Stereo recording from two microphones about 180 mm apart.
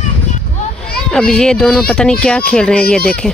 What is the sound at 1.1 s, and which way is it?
Speech, 5° left (ahead or behind).